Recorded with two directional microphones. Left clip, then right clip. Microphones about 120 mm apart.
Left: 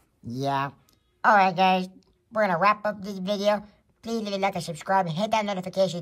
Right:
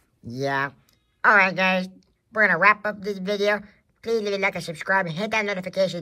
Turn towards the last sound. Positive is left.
turn(degrees=30)  # may be behind; listen again after turning